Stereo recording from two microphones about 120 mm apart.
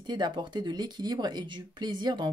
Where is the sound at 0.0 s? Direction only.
40° right (ahead or behind).